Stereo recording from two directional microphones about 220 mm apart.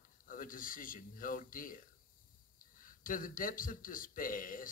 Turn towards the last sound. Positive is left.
turn(degrees=40)  # may be behind; listen again after turning